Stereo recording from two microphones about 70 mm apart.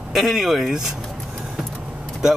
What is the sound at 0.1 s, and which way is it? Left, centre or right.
Speech, centre.